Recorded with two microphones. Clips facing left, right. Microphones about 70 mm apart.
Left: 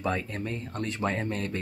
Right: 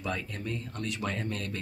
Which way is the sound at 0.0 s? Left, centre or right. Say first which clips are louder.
Left 5 dB; left.